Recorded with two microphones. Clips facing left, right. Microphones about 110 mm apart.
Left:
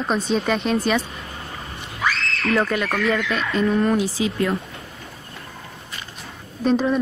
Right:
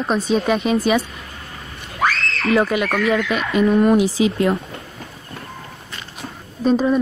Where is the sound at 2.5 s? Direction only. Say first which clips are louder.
Right 4 dB; 5° right (ahead or behind).